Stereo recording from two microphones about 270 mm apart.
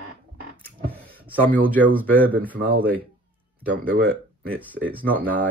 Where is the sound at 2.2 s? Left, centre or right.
Right.